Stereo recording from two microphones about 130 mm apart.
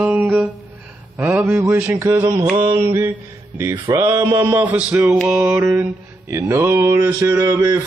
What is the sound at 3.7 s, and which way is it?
Mantra, 35° right (ahead or behind).